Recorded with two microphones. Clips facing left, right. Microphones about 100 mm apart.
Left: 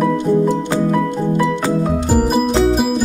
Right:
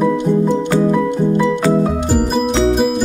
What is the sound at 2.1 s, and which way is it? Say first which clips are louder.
Music: left 2 dB; centre (ahead or behind).